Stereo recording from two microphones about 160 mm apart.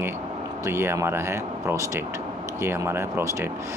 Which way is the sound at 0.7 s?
15° right (ahead or behind).